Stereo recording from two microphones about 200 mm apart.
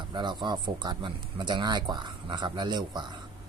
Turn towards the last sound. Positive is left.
turn(degrees=-20)  # may be behind; listen again after turning